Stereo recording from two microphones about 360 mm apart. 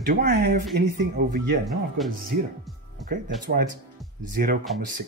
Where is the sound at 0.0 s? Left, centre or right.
Right.